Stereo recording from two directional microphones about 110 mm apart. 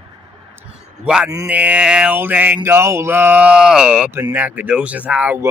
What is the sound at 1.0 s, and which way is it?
Mantra, 10° right (ahead or behind).